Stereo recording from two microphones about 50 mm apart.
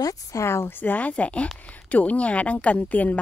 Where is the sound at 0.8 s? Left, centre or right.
Left.